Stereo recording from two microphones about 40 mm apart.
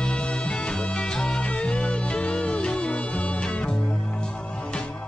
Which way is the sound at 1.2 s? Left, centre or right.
Left.